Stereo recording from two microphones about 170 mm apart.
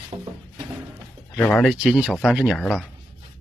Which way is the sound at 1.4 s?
5° left (ahead or behind).